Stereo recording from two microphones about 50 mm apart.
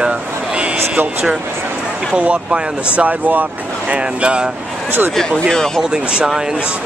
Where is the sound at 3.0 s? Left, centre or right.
Right.